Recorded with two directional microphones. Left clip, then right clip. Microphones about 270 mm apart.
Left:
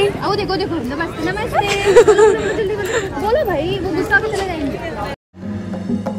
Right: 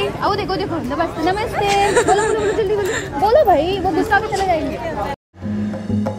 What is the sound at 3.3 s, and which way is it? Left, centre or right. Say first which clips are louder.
Speech: right 5 dB; right.